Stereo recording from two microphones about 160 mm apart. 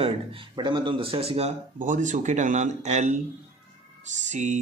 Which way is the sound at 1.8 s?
50° right (ahead or behind).